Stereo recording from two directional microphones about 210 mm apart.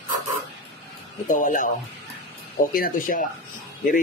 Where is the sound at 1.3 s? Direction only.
40° left (ahead or behind).